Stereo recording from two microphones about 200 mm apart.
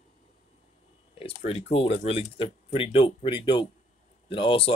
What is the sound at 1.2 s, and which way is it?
Speech, 30° left (ahead or behind).